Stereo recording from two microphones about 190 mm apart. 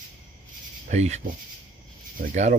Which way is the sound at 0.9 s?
35° right (ahead or behind).